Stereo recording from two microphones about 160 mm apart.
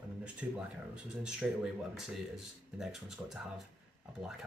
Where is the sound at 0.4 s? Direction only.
10° right (ahead or behind).